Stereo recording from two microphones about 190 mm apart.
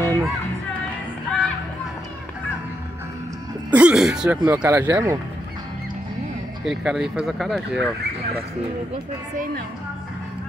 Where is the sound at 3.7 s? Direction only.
5° right (ahead or behind).